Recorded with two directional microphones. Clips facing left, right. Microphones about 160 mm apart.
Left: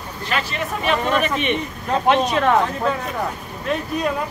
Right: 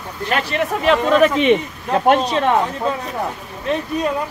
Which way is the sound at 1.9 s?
55° right (ahead or behind).